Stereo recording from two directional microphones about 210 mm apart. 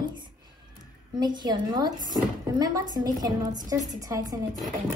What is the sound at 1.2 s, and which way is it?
A woman's voice, 20° right (ahead or behind).